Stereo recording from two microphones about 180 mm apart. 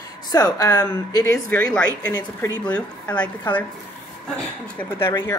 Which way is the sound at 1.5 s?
5° left (ahead or behind).